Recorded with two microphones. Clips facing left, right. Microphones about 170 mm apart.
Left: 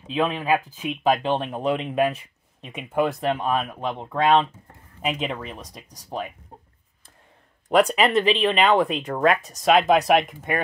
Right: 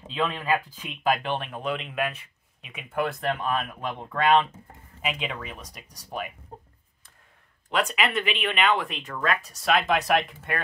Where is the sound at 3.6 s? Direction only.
25° left (ahead or behind).